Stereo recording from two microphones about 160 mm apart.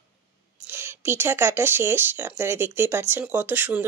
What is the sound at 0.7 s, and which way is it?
Speech, 15° right (ahead or behind).